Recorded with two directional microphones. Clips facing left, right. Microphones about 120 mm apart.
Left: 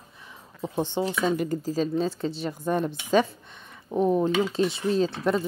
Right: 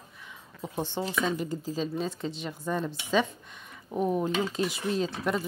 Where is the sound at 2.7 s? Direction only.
60° left (ahead or behind).